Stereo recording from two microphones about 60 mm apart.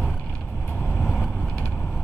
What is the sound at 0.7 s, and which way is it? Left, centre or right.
Vehicle, centre.